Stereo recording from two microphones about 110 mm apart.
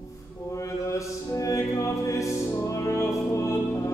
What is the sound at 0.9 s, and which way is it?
Music, 30° left (ahead or behind).